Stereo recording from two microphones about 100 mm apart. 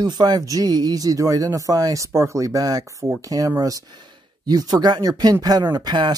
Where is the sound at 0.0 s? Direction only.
45° right (ahead or behind).